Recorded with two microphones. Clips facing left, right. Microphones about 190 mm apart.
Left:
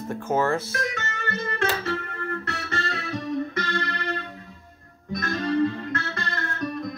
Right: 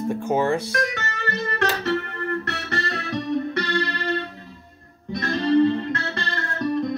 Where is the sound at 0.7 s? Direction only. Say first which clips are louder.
Right 4 dB; 65° right (ahead or behind).